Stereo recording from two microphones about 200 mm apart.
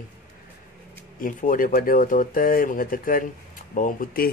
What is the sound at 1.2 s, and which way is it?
Speech, 40° left (ahead or behind).